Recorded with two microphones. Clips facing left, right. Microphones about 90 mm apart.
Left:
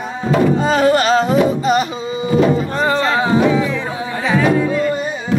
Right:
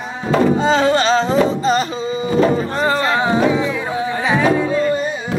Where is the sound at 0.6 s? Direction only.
25° right (ahead or behind).